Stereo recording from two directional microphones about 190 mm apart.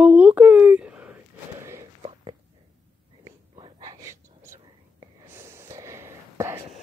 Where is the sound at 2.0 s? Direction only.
30° right (ahead or behind).